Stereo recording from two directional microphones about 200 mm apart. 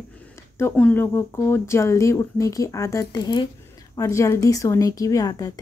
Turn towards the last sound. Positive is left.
turn(degrees=20)  # may be behind; listen again after turning